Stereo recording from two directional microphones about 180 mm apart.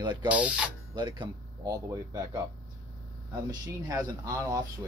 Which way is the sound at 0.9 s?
25° right (ahead or behind).